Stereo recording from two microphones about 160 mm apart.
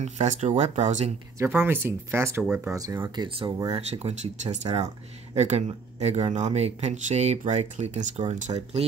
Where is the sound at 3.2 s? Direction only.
30° right (ahead or behind).